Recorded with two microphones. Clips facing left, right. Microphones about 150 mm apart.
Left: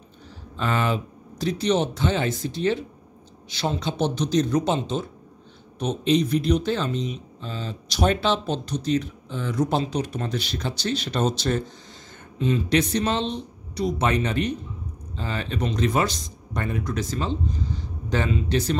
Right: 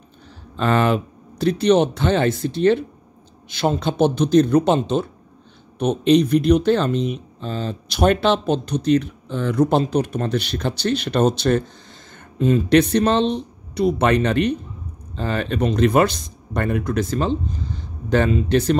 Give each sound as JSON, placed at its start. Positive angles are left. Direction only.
{"t": 0.6, "sound": "speech", "side_deg": -65}
{"t": 3.4, "sound": "speech", "side_deg": -50}
{"t": 12.4, "sound": "speech", "side_deg": -50}